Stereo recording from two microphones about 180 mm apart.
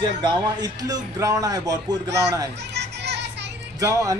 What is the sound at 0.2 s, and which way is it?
A man's voice, 20° right (ahead or behind).